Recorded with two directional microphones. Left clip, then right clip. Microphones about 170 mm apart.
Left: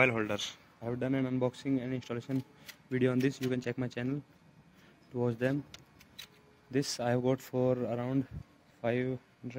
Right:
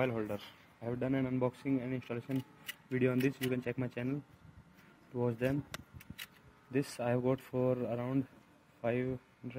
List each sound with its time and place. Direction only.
0.0 s speech: centre (ahead or behind); by 5.6 s 15° left (ahead or behind)
6.7 s speech: 10° left (ahead or behind)